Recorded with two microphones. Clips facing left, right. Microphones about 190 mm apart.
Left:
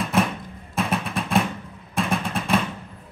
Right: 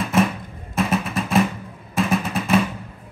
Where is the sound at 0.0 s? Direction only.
Centre (ahead or behind).